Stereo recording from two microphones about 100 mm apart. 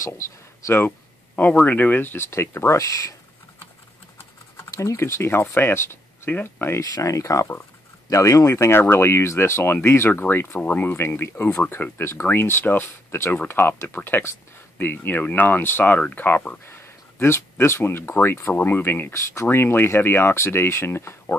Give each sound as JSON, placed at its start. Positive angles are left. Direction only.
{"t": 0.0, "sound": "speech", "side_deg": 30}
{"t": 4.6, "sound": "speech", "side_deg": 30}